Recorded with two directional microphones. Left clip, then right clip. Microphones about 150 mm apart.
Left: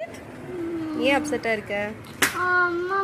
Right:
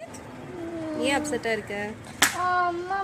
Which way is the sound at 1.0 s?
10° right (ahead or behind).